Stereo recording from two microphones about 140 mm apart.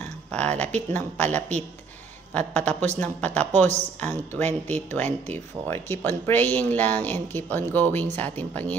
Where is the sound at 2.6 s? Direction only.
55° right (ahead or behind).